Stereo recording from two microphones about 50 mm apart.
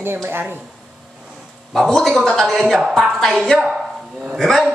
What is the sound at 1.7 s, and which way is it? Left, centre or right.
A man's voice, centre.